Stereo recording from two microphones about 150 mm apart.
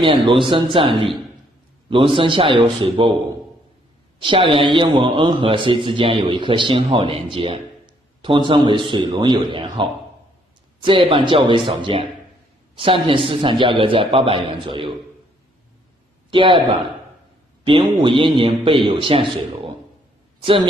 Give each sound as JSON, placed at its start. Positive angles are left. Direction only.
{"t": 0.0, "sound": "a man's voice", "side_deg": -35}
{"t": 4.2, "sound": "a man's voice", "side_deg": -35}
{"t": 16.3, "sound": "a man's voice", "side_deg": -35}
{"t": 17.6, "sound": "a man's voice", "side_deg": -30}